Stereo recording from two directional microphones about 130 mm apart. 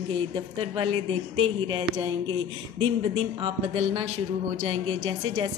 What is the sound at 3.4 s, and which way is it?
A woman's voice, 40° right (ahead or behind).